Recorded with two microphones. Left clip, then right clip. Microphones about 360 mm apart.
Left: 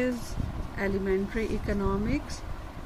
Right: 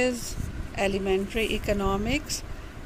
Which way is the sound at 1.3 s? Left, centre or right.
Right.